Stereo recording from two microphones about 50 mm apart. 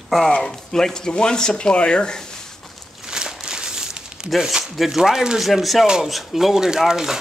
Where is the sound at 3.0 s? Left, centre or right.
Centre.